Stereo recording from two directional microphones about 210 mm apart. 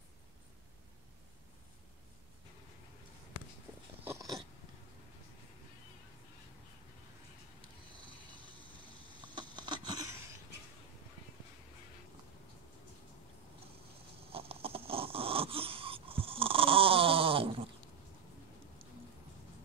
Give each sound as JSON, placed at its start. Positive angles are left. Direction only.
{"t": 4.0, "sound": "dog", "side_deg": -15}
{"t": 9.3, "sound": "a sound", "side_deg": -20}
{"t": 14.3, "sound": "snoring", "side_deg": -25}